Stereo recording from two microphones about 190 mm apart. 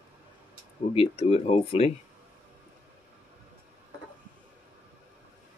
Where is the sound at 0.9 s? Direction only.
30° left (ahead or behind).